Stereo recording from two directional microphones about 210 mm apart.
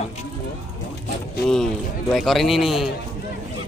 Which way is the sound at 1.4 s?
Centre (ahead or behind).